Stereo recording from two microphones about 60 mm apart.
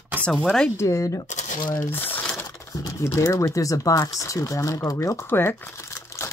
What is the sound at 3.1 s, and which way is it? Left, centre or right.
Speech, left.